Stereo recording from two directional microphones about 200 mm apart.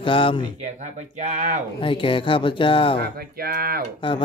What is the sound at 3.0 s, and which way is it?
Speech, 50° right (ahead or behind).